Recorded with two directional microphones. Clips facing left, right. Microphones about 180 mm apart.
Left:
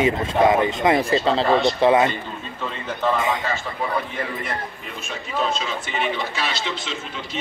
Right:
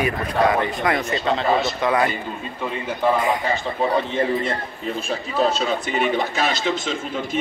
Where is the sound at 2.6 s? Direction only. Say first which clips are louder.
Right 3 dB; 15° right (ahead or behind).